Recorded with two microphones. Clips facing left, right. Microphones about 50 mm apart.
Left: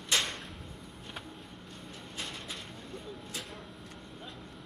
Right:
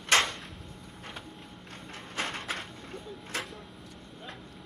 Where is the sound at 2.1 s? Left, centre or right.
Right.